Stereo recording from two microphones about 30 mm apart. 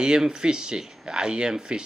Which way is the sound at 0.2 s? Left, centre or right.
Right.